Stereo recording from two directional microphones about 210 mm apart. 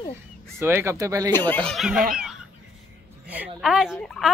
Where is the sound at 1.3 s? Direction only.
10° left (ahead or behind).